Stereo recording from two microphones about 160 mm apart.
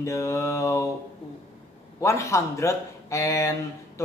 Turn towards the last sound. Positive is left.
turn(degrees=20)  # may be behind; listen again after turning